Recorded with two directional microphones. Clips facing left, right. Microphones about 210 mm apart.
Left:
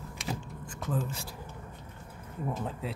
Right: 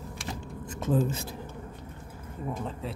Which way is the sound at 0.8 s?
25° right (ahead or behind).